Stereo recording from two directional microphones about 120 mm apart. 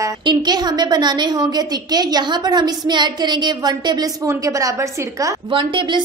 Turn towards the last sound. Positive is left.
turn(degrees=-40)  # may be behind; listen again after turning